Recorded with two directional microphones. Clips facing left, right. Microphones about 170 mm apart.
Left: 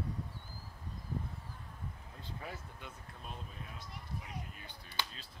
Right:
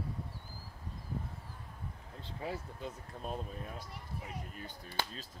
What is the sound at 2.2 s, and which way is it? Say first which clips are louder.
Speech: right 6 dB; 30° right (ahead or behind).